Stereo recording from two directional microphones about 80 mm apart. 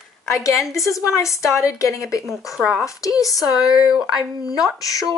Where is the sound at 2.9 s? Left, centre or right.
Left.